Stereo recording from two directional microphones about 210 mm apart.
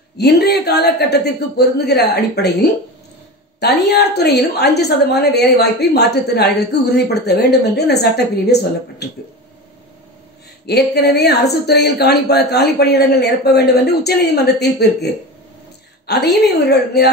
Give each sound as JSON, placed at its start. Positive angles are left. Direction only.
{"t": 0.2, "sound": "a woman's voice", "side_deg": 50}
{"t": 3.5, "sound": "a woman's voice", "side_deg": 50}
{"t": 10.7, "sound": "a woman's voice", "side_deg": 50}
{"t": 16.1, "sound": "a woman's voice", "side_deg": 50}